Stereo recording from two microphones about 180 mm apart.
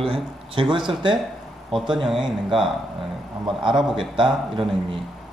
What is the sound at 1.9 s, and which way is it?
Speech, 5° right (ahead or behind).